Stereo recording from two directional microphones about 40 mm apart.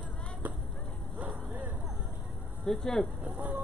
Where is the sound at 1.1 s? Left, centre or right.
Right.